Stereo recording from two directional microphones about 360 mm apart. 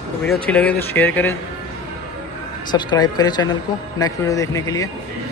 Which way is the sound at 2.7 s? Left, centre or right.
Centre.